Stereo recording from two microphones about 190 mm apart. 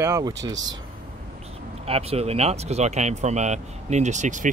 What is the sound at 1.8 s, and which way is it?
Speech, 30° right (ahead or behind).